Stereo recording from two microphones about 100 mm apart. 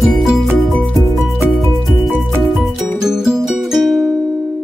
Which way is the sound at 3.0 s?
5° right (ahead or behind).